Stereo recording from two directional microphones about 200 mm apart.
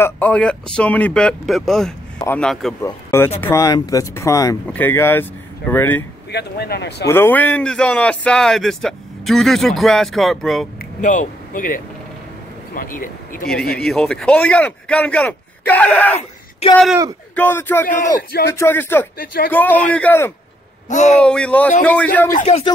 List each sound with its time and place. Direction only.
0.0 s speech: 10° left (ahead or behind)
6.3 s speech: 55° left (ahead or behind)
7.1 s speech: 10° left (ahead or behind)
10.8 s speech: 40° left (ahead or behind)
13.7 s speech: 5° left (ahead or behind)
16.2 s a sound: 30° left (ahead or behind)
17.4 s speech: 10° left (ahead or behind)
19.1 s speech: 45° left (ahead or behind)
19.5 s speech: 10° left (ahead or behind)
20.9 s speech: 35° left (ahead or behind)
21.2 s speech: 5° left (ahead or behind)
22.3 s speech: 35° left (ahead or behind)